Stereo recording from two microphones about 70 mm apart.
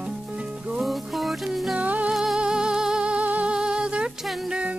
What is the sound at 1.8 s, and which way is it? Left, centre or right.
Music, right.